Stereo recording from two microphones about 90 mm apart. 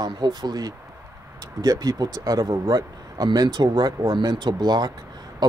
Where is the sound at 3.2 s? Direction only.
55° right (ahead or behind).